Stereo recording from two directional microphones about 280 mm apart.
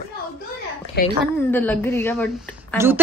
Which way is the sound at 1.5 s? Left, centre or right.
Centre.